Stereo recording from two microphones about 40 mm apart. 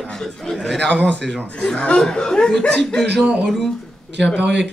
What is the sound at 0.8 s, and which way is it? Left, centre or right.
Speech, left.